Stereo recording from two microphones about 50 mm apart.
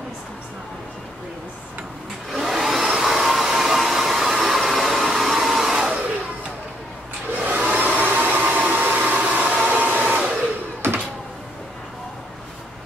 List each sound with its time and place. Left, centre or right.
2.3 s hair dryer: centre
7.3 s a sound: right
7.7 s hair dryer: right
9.4 s hair dryer: centre
9.7 s hair dryer: right
9.9 s hair dryer: right
10.8 s a sound: right